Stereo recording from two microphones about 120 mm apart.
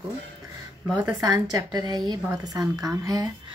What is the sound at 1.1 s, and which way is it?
A woman's voice, 30° right (ahead or behind).